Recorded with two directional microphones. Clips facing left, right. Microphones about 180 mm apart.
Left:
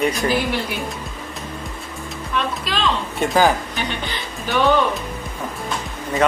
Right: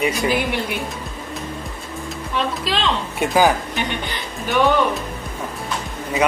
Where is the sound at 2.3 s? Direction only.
25° right (ahead or behind).